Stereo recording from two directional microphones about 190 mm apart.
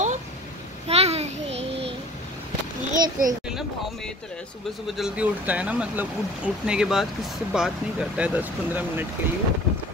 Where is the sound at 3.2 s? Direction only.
45° right (ahead or behind).